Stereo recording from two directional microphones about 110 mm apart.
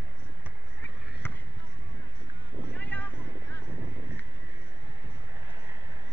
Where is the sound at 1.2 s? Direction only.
20° left (ahead or behind).